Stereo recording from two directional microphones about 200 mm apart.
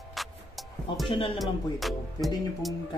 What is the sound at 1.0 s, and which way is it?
Speech, 25° left (ahead or behind).